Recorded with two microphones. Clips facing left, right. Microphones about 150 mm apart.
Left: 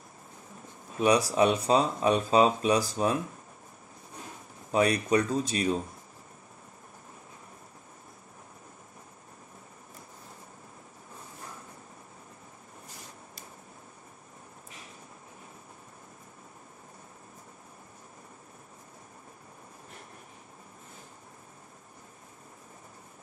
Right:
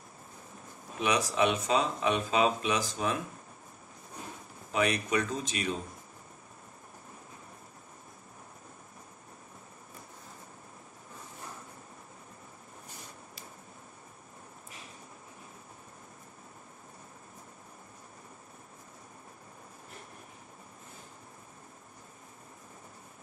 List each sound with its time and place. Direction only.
1.0 s speech: 35° left (ahead or behind)
4.7 s speech: 35° left (ahead or behind)